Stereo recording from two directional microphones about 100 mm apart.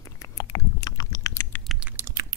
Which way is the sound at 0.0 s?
40° left (ahead or behind).